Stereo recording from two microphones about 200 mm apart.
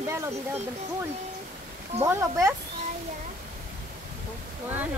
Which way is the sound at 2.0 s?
15° right (ahead or behind).